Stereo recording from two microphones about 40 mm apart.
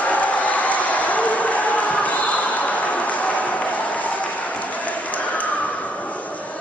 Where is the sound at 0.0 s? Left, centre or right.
Left.